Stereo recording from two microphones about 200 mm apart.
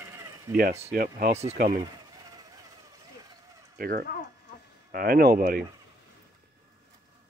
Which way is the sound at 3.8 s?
45° right (ahead or behind).